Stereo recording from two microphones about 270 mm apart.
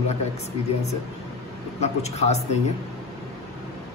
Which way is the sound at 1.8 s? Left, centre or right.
Left.